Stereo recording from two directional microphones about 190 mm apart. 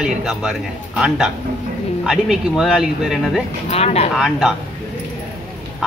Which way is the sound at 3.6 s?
35° left (ahead or behind).